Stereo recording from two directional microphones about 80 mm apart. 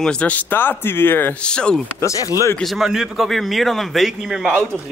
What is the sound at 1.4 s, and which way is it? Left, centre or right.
Speech, centre.